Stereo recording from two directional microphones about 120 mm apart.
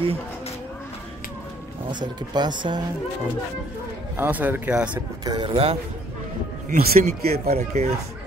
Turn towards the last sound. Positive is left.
turn(degrees=-65)  # may be behind; listen again after turning